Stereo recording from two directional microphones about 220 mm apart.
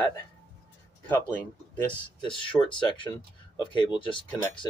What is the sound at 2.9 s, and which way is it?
Speech, 20° left (ahead or behind).